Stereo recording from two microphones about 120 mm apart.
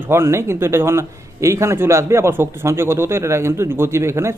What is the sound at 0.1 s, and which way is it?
A man's voice, 20° right (ahead or behind).